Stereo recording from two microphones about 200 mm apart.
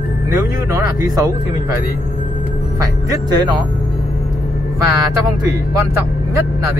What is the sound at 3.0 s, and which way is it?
Speech, 20° right (ahead or behind).